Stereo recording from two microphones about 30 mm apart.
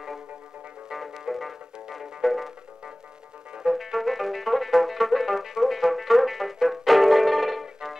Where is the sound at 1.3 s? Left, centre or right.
Centre.